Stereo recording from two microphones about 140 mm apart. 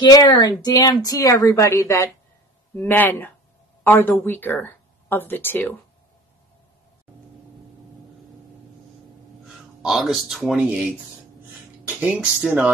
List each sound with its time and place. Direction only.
0.0 s speech: 30° left (ahead or behind); by 5.8 s 15° left (ahead or behind)
9.8 s speech: centre (ahead or behind)
11.9 s speech: 10° right (ahead or behind)